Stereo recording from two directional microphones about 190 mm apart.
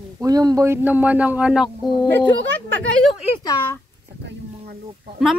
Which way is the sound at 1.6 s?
25° left (ahead or behind).